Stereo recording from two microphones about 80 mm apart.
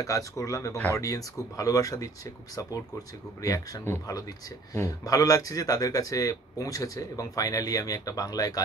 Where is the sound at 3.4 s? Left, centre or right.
Left.